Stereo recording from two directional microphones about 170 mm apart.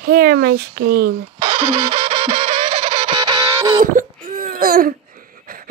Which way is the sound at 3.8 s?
50° right (ahead or behind).